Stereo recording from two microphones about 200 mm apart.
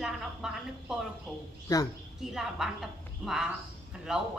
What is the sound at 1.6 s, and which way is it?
Speech, 15° left (ahead or behind).